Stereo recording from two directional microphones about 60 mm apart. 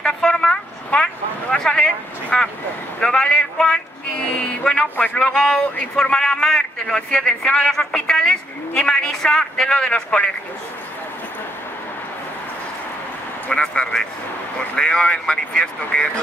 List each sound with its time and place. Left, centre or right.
0.0 s a sound: centre
5.3 s a man's voice: centre
13.5 s a man's voice: centre